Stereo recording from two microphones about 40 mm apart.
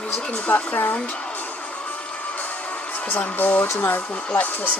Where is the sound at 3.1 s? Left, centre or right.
Left.